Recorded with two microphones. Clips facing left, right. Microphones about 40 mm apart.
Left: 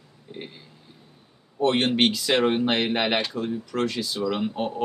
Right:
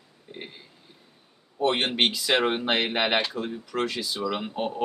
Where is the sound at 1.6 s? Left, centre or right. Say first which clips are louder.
Left 3 dB; centre.